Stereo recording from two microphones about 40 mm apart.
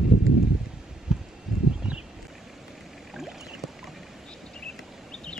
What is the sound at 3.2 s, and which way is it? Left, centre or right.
Rowboat, centre.